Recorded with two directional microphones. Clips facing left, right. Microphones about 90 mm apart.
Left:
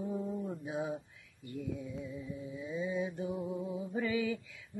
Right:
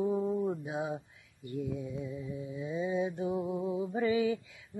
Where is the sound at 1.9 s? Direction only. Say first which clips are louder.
Right 3 dB; 20° right (ahead or behind).